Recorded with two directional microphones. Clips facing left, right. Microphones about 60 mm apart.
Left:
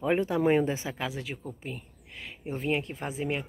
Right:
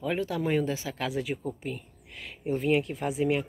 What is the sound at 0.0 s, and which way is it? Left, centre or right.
Speech, left.